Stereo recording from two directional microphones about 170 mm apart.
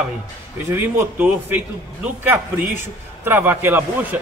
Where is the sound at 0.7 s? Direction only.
15° right (ahead or behind).